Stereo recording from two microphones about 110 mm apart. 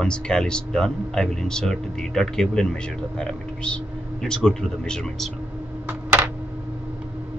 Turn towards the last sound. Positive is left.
turn(degrees=-25)  # may be behind; listen again after turning